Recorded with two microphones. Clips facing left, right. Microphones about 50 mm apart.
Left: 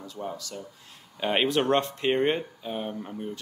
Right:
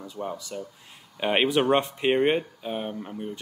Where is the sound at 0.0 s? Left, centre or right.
Centre.